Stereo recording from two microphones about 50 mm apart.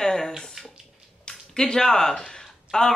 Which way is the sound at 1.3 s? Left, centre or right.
Centre.